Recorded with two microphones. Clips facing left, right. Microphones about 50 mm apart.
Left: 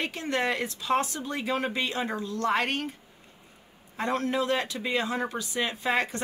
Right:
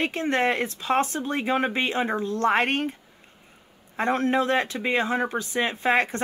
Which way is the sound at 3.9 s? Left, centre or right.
Right.